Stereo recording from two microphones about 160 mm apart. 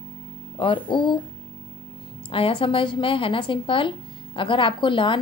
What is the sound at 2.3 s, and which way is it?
Speech, 35° left (ahead or behind).